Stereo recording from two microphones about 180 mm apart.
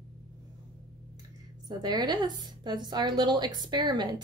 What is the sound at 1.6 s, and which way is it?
A woman's voice, 20° right (ahead or behind).